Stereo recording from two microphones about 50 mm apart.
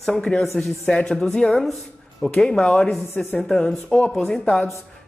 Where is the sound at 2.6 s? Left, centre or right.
Left.